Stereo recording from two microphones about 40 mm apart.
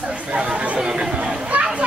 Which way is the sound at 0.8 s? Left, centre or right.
Centre.